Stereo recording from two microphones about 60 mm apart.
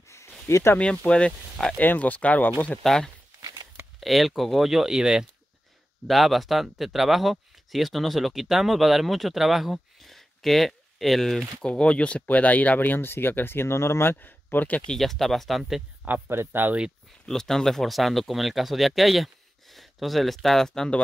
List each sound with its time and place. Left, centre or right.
0.5 s speech: left
1.0 s speech: centre
2.8 s speech: centre
4.0 s speech: centre
6.0 s speech: centre
11.6 s speech: centre; by 14.1 s left
14.1 s speech: left
15.0 s speech: centre
16.1 s speech: right
17.3 s speech: centre